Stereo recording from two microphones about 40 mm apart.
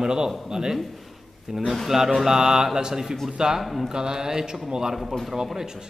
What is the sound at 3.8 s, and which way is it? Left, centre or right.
Speech, centre.